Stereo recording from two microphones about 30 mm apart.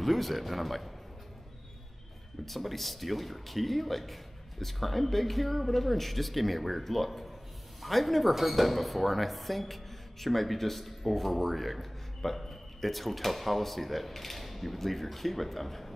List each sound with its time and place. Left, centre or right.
0.0 s speech: centre
2.4 s speech: centre